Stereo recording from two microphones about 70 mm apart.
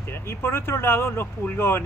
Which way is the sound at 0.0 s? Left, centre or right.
Left.